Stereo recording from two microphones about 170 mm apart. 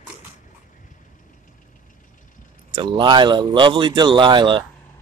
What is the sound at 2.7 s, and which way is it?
Speech, 25° right (ahead or behind).